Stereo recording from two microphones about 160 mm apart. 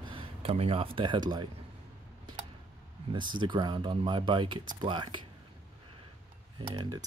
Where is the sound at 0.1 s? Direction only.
35° right (ahead or behind).